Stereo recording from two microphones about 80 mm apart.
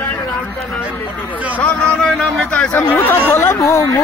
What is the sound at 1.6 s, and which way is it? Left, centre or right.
Speech, centre.